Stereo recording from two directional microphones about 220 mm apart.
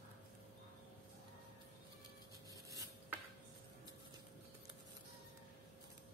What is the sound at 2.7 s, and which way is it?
Dishes, 15° right (ahead or behind).